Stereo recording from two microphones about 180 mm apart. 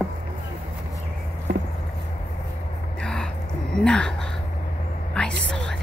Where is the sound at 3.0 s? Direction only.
5° left (ahead or behind).